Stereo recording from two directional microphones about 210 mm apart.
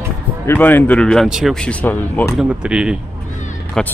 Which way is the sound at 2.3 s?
5° right (ahead or behind).